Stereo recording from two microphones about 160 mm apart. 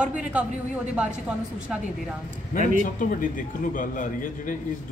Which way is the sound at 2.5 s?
60° left (ahead or behind).